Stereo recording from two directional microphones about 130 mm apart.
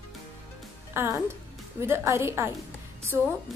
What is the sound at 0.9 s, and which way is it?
A woman's voice, 20° right (ahead or behind).